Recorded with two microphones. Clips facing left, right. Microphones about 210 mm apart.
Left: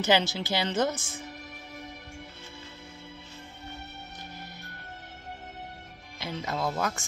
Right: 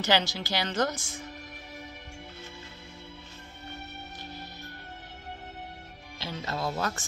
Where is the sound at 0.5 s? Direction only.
25° left (ahead or behind).